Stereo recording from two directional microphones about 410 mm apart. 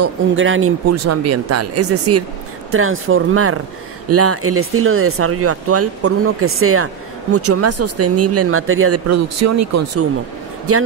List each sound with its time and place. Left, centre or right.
0.0 s speech: right